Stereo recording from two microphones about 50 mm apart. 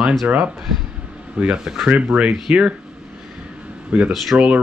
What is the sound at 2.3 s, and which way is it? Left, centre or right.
Speech, centre.